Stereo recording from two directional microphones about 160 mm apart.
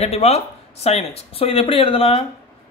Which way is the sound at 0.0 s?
40° left (ahead or behind).